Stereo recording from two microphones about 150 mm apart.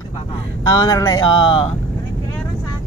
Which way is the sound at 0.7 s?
25° left (ahead or behind).